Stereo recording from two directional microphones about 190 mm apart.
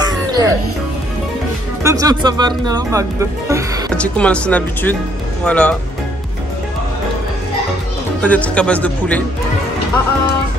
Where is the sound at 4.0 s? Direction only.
5° left (ahead or behind).